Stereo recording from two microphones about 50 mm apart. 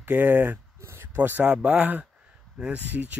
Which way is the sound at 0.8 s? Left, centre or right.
Right.